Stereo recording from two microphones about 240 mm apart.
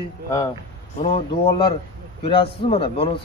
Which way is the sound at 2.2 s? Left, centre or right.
Left.